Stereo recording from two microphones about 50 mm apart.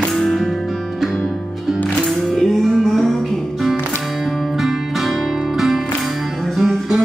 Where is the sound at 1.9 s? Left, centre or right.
Centre.